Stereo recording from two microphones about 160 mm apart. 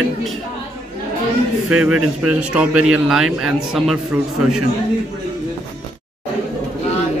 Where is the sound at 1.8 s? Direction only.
5° right (ahead or behind).